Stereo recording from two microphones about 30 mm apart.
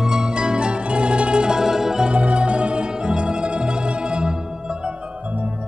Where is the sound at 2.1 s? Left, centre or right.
Right.